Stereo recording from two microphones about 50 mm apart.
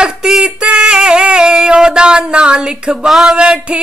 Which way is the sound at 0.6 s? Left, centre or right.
Right.